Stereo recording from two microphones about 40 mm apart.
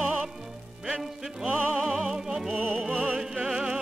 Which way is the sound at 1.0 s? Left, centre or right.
Centre.